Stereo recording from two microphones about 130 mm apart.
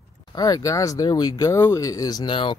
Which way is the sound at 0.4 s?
25° left (ahead or behind).